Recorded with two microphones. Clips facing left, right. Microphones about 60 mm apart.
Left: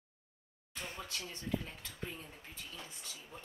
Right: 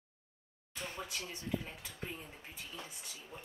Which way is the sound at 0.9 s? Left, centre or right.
Centre.